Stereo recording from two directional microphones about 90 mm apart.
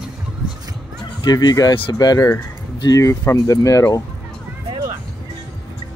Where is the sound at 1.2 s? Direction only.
50° left (ahead or behind).